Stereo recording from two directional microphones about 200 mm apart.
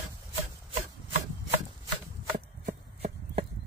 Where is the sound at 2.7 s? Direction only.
35° right (ahead or behind).